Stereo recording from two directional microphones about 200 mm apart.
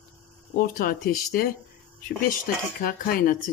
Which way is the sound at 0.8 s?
45° left (ahead or behind).